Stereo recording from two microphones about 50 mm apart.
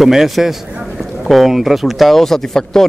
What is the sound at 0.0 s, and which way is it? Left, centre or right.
A man's voice, centre.